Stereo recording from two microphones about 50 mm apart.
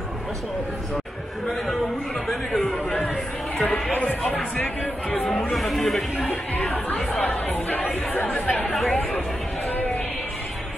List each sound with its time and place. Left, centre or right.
2.2 s chatter: centre
5.4 s speech: centre
6.2 s music: left
8.4 s chatter: left
8.6 s chatter: centre